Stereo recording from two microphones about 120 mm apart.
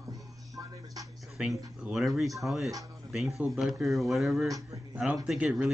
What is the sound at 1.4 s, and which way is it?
Speech, 5° right (ahead or behind).